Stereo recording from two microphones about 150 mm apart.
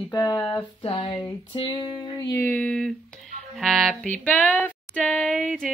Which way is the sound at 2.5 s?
10° left (ahead or behind).